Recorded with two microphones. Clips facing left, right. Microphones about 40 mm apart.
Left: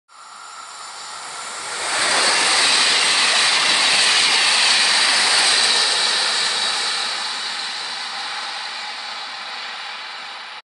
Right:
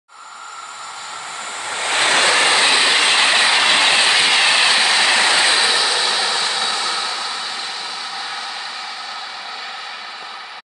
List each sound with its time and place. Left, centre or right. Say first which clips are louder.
1.7 s vehicle: right 3 dB; right
3.0 s train: right 3 dB; right
4.0 s train: right 2 dB; right
5.0 s train: right 3 dB; right
5.5 s vehicle: right 2 dB; centre